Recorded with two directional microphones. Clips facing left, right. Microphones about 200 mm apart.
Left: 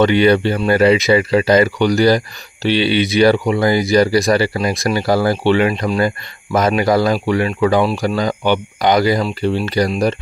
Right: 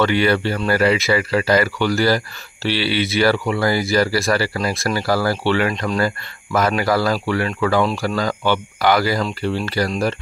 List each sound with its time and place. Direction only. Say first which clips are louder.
0.0 s speech: left 5 dB; 20° left (ahead or behind)